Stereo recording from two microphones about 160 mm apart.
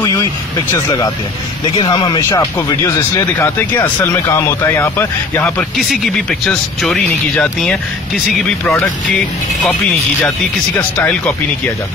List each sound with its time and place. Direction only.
0.0 s speech: 25° left (ahead or behind)
1.8 s speech: 30° left (ahead or behind); by 7.8 s 5° left (ahead or behind)